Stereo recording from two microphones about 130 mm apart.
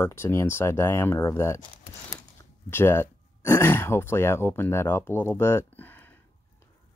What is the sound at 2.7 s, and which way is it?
Speech, 20° left (ahead or behind).